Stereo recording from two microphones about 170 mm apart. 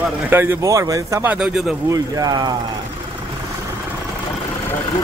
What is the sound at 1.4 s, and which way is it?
Speech, 5° right (ahead or behind).